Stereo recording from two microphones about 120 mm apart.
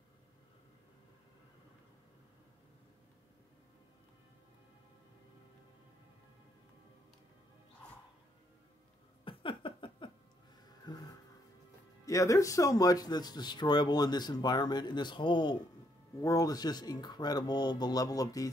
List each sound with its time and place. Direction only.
9.2 s a sound: 45° left (ahead or behind)
12.1 s speech: 25° left (ahead or behind)
16.2 s speech: 30° left (ahead or behind)